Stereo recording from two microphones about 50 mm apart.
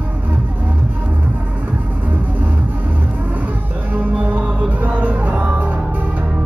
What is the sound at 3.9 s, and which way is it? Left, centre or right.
Music, right.